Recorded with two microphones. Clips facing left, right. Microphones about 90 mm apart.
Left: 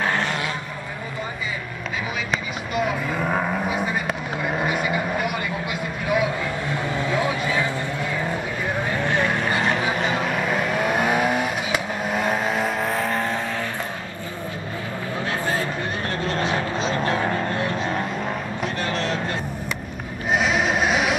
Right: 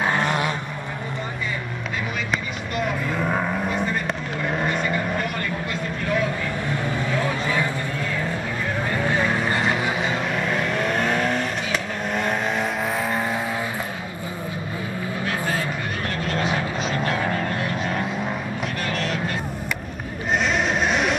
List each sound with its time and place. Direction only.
0.0 s a sound: 15° right (ahead or behind)
2.7 s vehicle: 5° left (ahead or behind)
9.2 s vehicle: centre (ahead or behind)
15.2 s vehicle: 25° left (ahead or behind)
20.3 s vehicle: 5° left (ahead or behind)